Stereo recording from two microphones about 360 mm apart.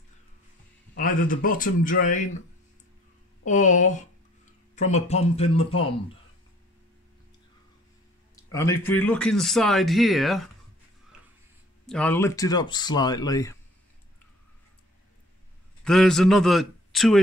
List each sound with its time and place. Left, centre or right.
0.9 s a man's voice: left
3.4 s a man's voice: left
8.5 s a man's voice: centre
11.8 s speech: centre
15.8 s a man's voice: centre